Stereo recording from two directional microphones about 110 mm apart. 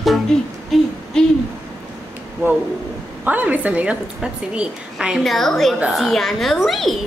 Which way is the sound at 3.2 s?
15° right (ahead or behind).